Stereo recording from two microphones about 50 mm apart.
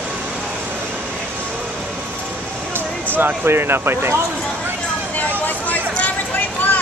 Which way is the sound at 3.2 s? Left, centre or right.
Right.